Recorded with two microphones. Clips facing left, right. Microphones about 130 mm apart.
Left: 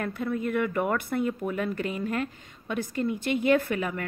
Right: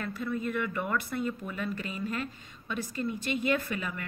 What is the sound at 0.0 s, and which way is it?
A woman's voice, 55° left (ahead or behind).